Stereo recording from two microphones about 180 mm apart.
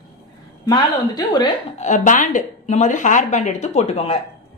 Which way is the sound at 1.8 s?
45° left (ahead or behind).